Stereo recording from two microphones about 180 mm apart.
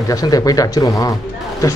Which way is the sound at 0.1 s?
20° left (ahead or behind).